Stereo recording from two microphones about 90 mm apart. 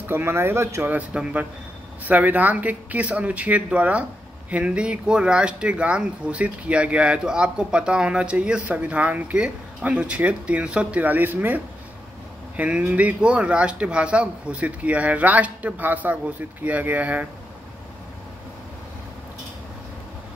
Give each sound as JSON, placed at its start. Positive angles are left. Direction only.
{"t": 0.0, "sound": "speech", "side_deg": -25}
{"t": 0.8, "sound": "speech", "side_deg": -15}